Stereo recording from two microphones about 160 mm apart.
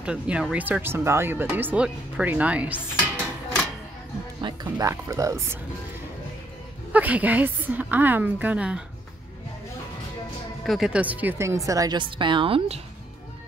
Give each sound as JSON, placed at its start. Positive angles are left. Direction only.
{"t": 0.0, "sound": "speech", "side_deg": -5}
{"t": 4.4, "sound": "speech", "side_deg": -25}
{"t": 6.9, "sound": "speech", "side_deg": -10}
{"t": 10.6, "sound": "speech", "side_deg": 0}